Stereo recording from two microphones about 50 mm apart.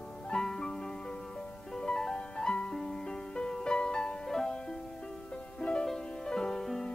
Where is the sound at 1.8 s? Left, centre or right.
Centre.